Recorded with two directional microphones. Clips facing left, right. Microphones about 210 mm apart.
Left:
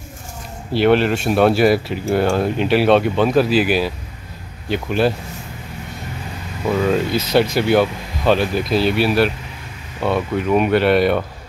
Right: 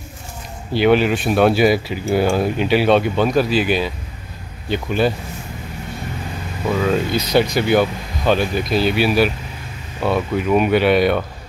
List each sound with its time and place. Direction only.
0.7 s speech: centre (ahead or behind)
6.7 s speech: centre (ahead or behind)